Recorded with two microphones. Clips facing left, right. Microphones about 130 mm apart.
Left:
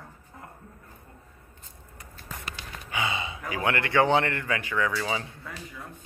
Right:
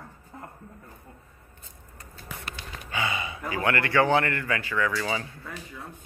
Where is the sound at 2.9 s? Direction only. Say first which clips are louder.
Even; 20° left (ahead or behind).